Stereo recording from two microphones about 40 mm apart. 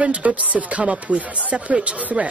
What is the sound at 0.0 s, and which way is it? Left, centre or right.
Speech, right.